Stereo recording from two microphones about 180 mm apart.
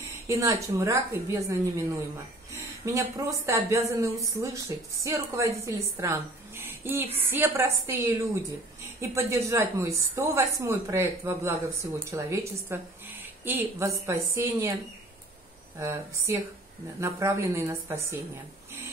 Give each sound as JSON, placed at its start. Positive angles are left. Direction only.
{"t": 0.3, "sound": "a woman's voice", "side_deg": -20}
{"t": 4.7, "sound": "speech", "side_deg": 25}
{"t": 5.0, "sound": "a woman's voice", "side_deg": -15}
{"t": 15.8, "sound": "a woman's voice", "side_deg": -15}